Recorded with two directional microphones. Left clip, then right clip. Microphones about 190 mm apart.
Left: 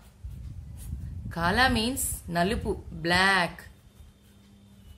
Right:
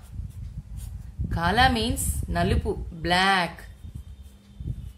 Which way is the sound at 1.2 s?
10° left (ahead or behind).